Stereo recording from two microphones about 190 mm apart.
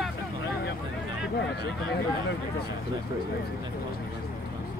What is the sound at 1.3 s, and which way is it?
Speech, 65° left (ahead or behind).